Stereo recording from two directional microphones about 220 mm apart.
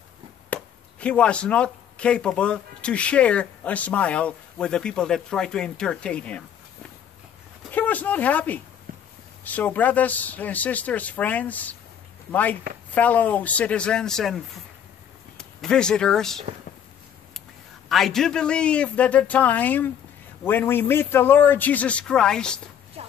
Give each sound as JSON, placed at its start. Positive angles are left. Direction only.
{"t": 0.5, "sound": "speech", "side_deg": 5}
{"t": 7.7, "sound": "a man's voice", "side_deg": 5}
{"t": 17.8, "sound": "a man's voice", "side_deg": 0}
{"t": 23.0, "sound": "a sound", "side_deg": -30}